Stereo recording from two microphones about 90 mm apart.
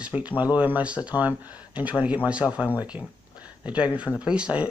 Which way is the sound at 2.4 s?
Centre (ahead or behind).